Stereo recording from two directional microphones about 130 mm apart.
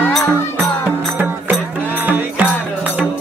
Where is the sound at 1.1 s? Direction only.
15° right (ahead or behind).